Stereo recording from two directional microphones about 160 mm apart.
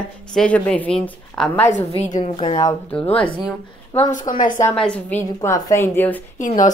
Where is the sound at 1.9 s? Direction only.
45° left (ahead or behind).